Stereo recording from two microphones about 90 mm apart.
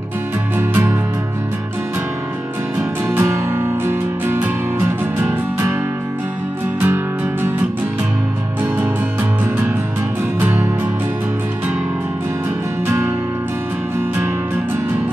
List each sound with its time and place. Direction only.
0.6 s music: 25° right (ahead or behind)
3.1 s music: 30° right (ahead or behind)
12.8 s music: 30° right (ahead or behind)